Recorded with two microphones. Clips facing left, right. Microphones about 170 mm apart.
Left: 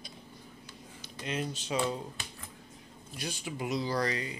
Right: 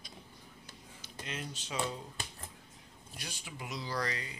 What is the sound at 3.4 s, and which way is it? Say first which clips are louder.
Speech: left 9 dB; 25° left (ahead or behind).